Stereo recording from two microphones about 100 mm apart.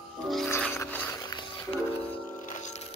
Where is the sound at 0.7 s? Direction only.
20° left (ahead or behind).